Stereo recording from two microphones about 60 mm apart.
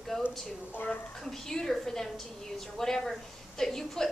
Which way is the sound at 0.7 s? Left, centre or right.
Left.